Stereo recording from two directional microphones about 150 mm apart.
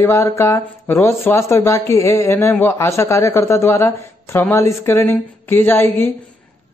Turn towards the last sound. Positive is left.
turn(degrees=15)  # may be behind; listen again after turning